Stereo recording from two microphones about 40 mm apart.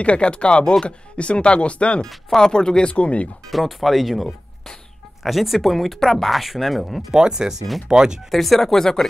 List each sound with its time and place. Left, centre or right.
0.0 s speech: left
2.0 s speech: centre
2.5 s speech: left
3.4 s speech: centre
7.1 s speech: centre
8.3 s speech: centre